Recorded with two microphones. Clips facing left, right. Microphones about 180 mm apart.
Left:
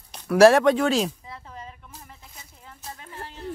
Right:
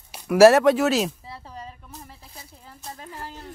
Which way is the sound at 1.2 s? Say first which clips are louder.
Right 1 dB; 35° right (ahead or behind).